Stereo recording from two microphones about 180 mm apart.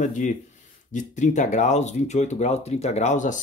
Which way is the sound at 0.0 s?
45° left (ahead or behind).